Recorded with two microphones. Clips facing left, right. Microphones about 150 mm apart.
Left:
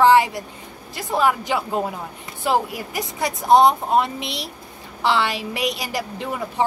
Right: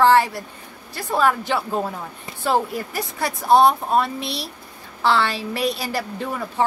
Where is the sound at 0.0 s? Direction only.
15° left (ahead or behind).